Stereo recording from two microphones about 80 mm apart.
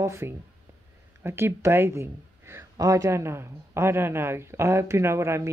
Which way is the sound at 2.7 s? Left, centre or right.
Right.